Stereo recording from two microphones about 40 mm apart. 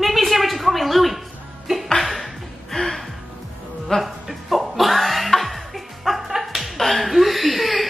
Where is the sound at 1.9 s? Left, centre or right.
Centre.